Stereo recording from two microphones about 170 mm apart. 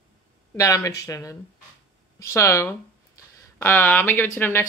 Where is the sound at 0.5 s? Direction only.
20° left (ahead or behind).